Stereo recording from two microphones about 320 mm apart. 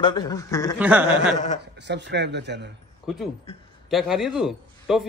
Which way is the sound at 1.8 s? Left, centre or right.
Right.